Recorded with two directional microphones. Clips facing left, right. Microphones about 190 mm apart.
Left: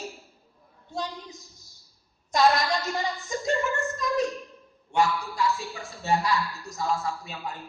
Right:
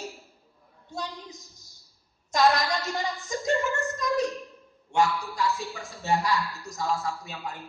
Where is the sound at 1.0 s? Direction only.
Centre (ahead or behind).